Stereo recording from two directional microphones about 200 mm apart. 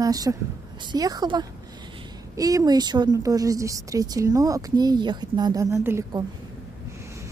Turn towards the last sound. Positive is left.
turn(degrees=-15)  # may be behind; listen again after turning